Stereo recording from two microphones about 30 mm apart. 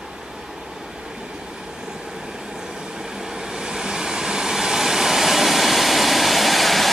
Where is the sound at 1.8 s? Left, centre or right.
Right.